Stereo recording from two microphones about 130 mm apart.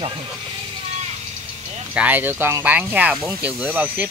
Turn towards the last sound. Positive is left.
turn(degrees=-10)  # may be behind; listen again after turning